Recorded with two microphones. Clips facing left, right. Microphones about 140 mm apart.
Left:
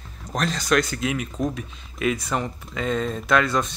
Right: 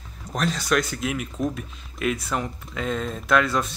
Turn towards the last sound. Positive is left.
turn(degrees=-5)  # may be behind; listen again after turning